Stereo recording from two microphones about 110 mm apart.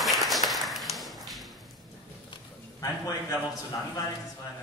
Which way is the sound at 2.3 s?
35° left (ahead or behind).